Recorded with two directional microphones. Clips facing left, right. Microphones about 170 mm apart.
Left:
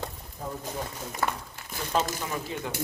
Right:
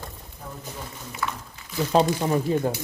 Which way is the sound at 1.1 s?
50° left (ahead or behind).